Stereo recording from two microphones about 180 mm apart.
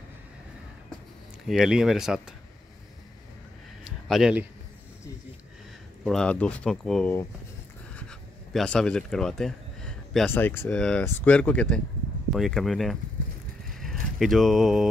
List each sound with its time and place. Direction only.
1.5 s speech: centre (ahead or behind)
4.1 s speech: 5° right (ahead or behind)
6.0 s speech: 5° left (ahead or behind)
7.9 s a sound: 5° left (ahead or behind)
10.3 s speech: 10° left (ahead or behind)